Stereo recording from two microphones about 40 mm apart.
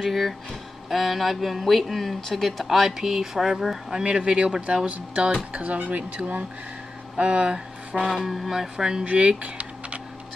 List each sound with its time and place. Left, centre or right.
0.0 s speech: centre
4.0 s speech: right
4.8 s speech: right
8.1 s speech: centre
9.0 s speech: right